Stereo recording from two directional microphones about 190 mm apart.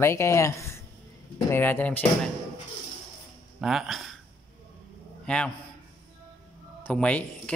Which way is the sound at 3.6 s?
Centre (ahead or behind).